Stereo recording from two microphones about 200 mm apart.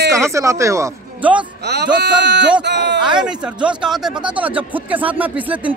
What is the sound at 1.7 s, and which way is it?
Speech, 55° right (ahead or behind).